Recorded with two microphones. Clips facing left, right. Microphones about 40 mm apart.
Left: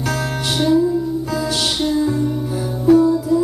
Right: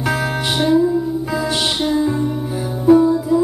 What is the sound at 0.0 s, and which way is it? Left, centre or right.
Music, centre.